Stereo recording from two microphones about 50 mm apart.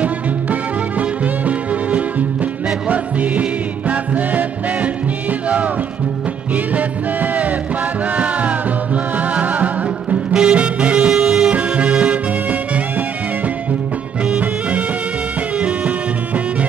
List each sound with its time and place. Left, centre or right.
0.0 s music: right
6.5 s music: right